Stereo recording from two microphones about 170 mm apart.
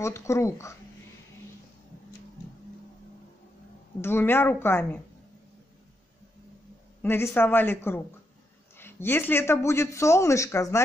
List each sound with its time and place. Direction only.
0.0 s speech: 15° left (ahead or behind)
4.0 s speech: 15° left (ahead or behind)
7.0 s speech: 15° left (ahead or behind)